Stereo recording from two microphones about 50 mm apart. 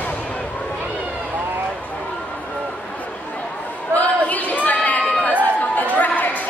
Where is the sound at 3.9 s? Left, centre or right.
Left.